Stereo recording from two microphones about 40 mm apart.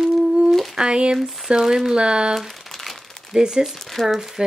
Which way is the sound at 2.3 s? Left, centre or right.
Centre.